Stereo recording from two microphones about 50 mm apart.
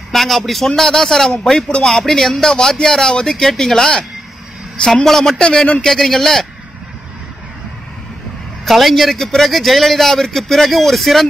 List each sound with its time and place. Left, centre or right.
0.1 s a man's voice: centre
5.4 s a man's voice: centre
5.9 s a man's voice: centre
8.6 s a man's voice: centre